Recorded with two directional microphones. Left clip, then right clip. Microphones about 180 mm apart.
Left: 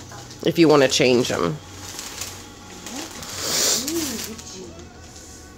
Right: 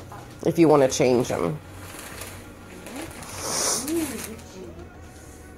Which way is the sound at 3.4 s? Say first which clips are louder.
Left 5 dB; 45° left (ahead or behind).